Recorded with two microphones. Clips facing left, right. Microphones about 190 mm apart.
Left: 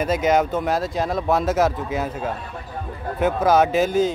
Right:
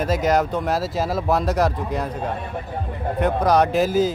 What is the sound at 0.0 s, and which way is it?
Speech, centre (ahead or behind).